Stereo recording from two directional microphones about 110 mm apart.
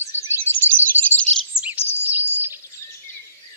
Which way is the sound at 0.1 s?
20° right (ahead or behind).